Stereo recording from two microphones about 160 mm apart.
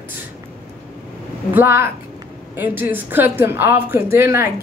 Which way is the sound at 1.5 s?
15° right (ahead or behind).